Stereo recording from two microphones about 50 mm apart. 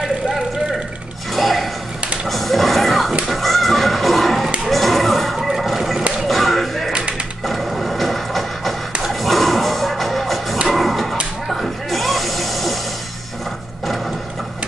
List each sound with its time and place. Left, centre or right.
0.0 s vehicle: centre
1.3 s a sound: centre
3.3 s fowl: centre
4.6 s a sound: centre
6.2 s music: centre
6.9 s typewriter: centre
7.4 s music: centre
10.7 s a sound: centre
11.4 s snake: centre